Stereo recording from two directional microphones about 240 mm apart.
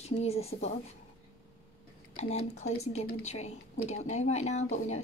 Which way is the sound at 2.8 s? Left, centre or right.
Left.